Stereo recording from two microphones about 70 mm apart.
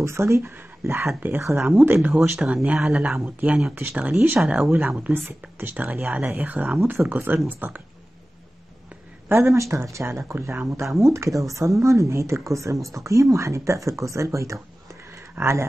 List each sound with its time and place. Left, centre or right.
0.0 s speech: right
0.4 s speech: right
2.3 s speech: centre
3.3 s a woman's voice: right
5.1 s a woman's voice: right
9.3 s speech: right